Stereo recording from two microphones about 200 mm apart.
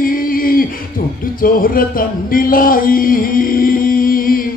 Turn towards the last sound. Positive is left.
turn(degrees=45)  # may be behind; listen again after turning